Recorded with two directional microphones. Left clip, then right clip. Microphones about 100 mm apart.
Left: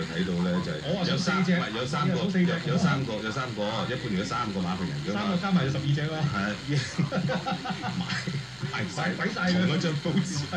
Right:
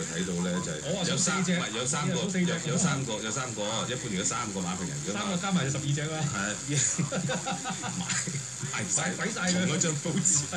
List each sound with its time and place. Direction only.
0.6 s speech: 40° right (ahead or behind)
5.2 s speech: 35° right (ahead or behind)
9.0 s speech: 40° right (ahead or behind)